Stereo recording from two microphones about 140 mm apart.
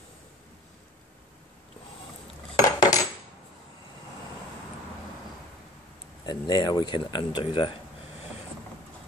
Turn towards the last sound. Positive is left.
turn(degrees=35)  # may be behind; listen again after turning